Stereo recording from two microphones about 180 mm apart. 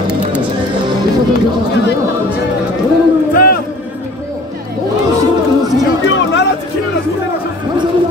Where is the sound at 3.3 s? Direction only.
55° left (ahead or behind).